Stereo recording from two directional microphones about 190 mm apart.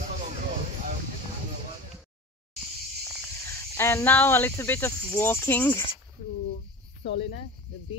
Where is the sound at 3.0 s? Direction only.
Centre (ahead or behind).